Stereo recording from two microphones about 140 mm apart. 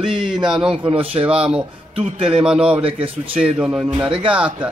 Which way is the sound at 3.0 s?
40° right (ahead or behind).